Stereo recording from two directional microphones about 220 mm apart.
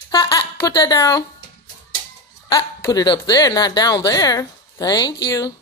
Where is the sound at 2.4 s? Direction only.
15° left (ahead or behind).